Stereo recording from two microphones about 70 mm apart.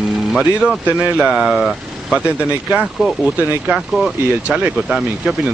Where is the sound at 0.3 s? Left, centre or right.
Centre.